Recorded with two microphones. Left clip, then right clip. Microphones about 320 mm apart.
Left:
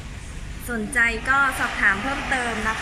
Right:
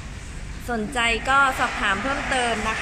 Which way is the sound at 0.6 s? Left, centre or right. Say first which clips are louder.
Left 1 dB; centre.